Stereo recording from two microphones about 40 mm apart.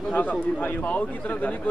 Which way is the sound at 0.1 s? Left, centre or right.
Left.